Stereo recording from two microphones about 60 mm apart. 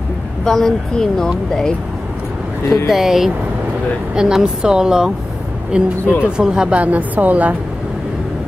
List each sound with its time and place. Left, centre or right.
0.5 s speech: centre
2.9 s speech: centre
6.7 s a woman's voice: right